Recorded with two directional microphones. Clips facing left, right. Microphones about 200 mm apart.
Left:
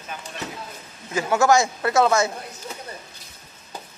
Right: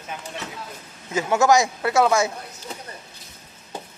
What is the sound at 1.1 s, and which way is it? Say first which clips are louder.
Speech: even; 20° right (ahead or behind).